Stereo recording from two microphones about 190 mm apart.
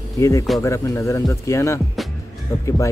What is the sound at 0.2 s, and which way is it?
Speech, 15° left (ahead or behind).